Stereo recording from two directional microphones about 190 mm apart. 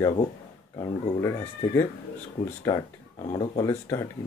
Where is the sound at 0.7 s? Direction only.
20° left (ahead or behind).